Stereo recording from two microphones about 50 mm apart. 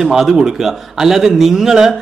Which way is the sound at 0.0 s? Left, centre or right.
Centre.